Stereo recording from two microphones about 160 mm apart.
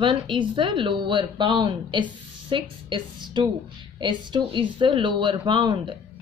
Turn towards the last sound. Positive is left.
turn(degrees=-30)  # may be behind; listen again after turning